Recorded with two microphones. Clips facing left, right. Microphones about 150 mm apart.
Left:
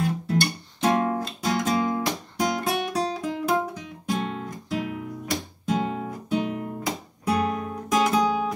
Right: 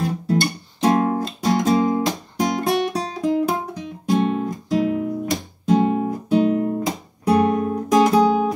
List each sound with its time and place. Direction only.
0.0 s guitar: 35° right (ahead or behind)